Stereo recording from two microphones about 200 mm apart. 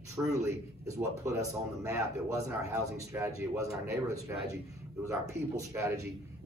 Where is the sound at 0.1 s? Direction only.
15° right (ahead or behind).